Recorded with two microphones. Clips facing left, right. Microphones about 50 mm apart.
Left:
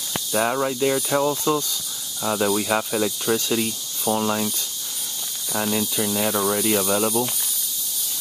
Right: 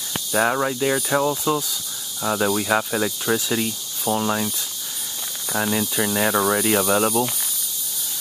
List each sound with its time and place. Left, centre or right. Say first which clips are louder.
0.3 s speech: right 2 dB; centre
6.0 s speech: right 4 dB; right